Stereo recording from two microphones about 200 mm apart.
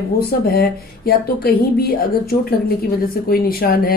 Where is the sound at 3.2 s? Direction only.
50° left (ahead or behind).